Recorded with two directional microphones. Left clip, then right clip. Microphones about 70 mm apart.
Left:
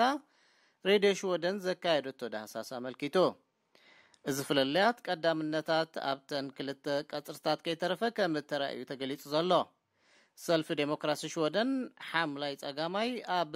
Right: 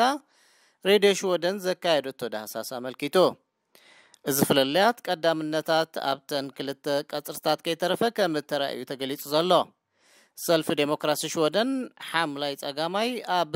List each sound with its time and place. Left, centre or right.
0.8 s speech: right